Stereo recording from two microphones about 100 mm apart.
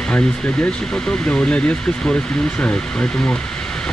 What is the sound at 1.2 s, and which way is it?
Speech, 15° left (ahead or behind).